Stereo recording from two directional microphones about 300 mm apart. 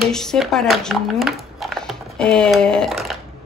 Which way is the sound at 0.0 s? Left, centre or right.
Centre.